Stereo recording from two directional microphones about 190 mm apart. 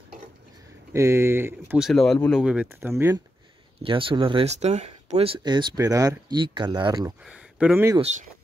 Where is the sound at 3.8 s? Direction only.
30° right (ahead or behind).